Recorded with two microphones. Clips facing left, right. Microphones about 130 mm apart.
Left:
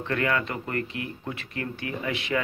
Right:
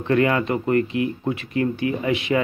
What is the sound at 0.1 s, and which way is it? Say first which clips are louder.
Speech: right 8 dB; 20° right (ahead or behind).